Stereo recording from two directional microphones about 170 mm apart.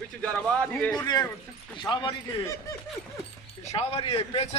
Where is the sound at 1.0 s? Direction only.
25° left (ahead or behind).